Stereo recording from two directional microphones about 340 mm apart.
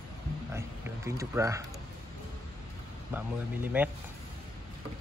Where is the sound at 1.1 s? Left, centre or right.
Centre.